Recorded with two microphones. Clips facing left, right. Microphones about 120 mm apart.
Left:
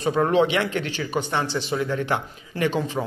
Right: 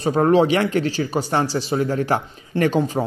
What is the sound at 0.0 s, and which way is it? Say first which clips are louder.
Speech: right 4 dB; 35° right (ahead or behind).